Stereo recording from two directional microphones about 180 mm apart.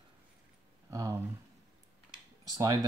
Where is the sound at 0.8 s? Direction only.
15° right (ahead or behind).